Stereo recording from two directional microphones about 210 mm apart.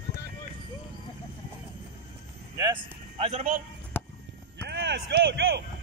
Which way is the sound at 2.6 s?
20° right (ahead or behind).